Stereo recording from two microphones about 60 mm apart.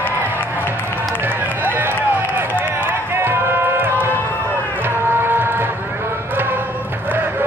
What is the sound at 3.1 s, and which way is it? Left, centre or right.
Music, right.